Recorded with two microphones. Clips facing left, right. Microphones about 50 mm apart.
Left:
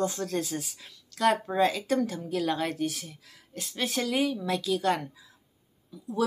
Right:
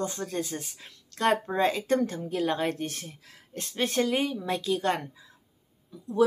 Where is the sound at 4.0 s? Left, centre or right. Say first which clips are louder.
Even; right.